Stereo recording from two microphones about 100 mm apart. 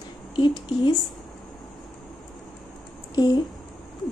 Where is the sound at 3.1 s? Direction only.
45° left (ahead or behind).